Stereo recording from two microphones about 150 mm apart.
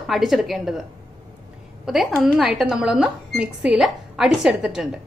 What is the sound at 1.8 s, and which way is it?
A woman's voice, 5° right (ahead or behind).